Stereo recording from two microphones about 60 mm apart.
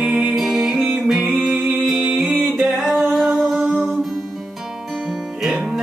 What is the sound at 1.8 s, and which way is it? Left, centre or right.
A capella, centre.